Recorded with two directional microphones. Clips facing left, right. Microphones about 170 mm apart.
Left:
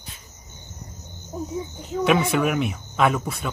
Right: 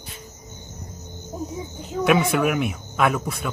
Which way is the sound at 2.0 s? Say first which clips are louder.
Right 1 dB; 5° right (ahead or behind).